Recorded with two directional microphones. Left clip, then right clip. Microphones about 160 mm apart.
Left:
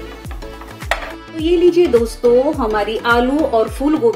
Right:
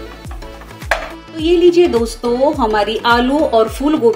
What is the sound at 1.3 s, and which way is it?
A woman's voice, 5° right (ahead or behind).